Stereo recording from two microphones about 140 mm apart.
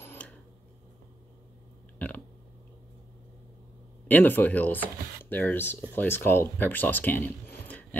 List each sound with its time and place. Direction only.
0.0 s a sound: 15° left (ahead or behind)
2.0 s burping: 10° left (ahead or behind)
4.1 s speech: 15° left (ahead or behind)